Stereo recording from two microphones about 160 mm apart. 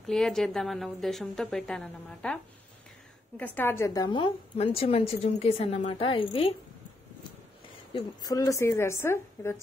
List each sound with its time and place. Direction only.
0.0 s a woman's voice: centre (ahead or behind)
3.3 s a woman's voice: 10° left (ahead or behind); by 6.5 s 35° left (ahead or behind)
8.2 s a woman's voice: 20° left (ahead or behind)